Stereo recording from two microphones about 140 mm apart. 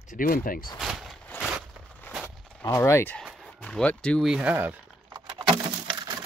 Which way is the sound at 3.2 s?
Centre (ahead or behind).